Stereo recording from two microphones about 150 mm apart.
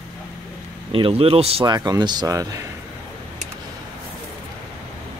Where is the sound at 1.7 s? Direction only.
25° right (ahead or behind).